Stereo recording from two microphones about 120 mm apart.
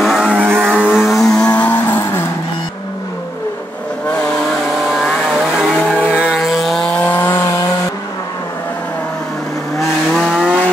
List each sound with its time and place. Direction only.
0.0 s vehicle: centre (ahead or behind)
0.4 s vehicle: 15° right (ahead or behind)
0.7 s vehicle: centre (ahead or behind); by 2.2 s 20° left (ahead or behind)
4.8 s vehicle: 5° right (ahead or behind); by 7.5 s 20° left (ahead or behind)
9.8 s vehicle: centre (ahead or behind)